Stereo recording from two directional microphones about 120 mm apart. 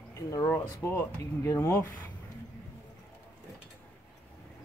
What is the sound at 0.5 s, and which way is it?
Speech, 20° left (ahead or behind).